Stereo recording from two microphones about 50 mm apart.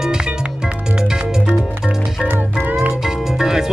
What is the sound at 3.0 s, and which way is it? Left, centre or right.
Music, centre.